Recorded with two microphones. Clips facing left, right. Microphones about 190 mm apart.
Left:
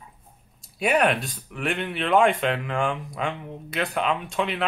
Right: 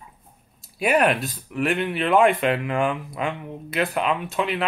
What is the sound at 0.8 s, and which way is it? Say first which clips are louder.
Speech: right 2 dB; centre (ahead or behind).